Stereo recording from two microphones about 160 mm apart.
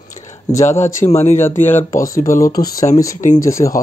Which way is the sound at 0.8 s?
45° left (ahead or behind).